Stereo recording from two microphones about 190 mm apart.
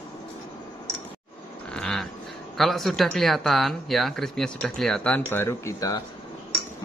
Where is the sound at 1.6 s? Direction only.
5° left (ahead or behind).